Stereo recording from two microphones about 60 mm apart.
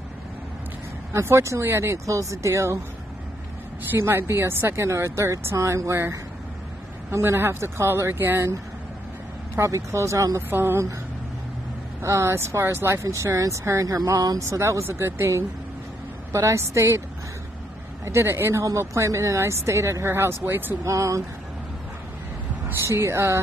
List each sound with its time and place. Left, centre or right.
1.1 s speech: right
3.9 s speech: right
7.1 s speech: right
9.6 s speech: right
10.5 s speech: right
12.0 s speech: right
13.2 s speech: right
14.6 s speech: right
18.0 s speech: right
20.8 s speech: right
22.8 s speech: right